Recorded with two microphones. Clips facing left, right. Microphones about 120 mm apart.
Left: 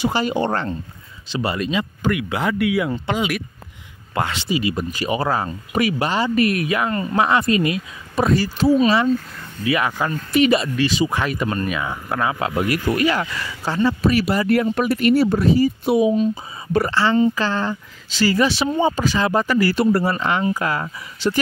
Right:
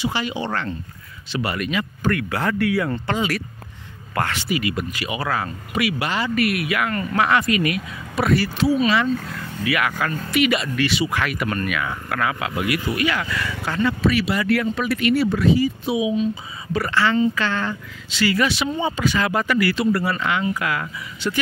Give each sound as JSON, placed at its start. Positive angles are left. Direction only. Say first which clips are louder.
{"t": 0.0, "sound": "speech", "louder": "left 5 dB", "side_deg": 45}
{"t": 0.5, "sound": "speech", "louder": "left 3 dB", "side_deg": 35}
{"t": 5.7, "sound": "speech", "louder": "left 3 dB", "side_deg": 40}
{"t": 8.5, "sound": "speech", "louder": "left 6 dB", "side_deg": 40}
{"t": 16.9, "sound": "speech", "louder": "even", "side_deg": 30}